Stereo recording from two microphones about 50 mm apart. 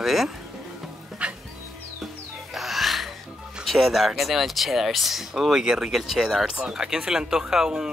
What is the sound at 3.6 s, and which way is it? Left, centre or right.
Speech, centre.